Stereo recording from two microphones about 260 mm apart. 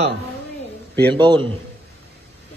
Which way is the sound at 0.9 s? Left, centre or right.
Centre.